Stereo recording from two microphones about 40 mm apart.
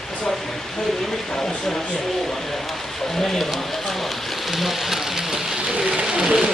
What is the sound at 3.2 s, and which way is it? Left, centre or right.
Speech, centre.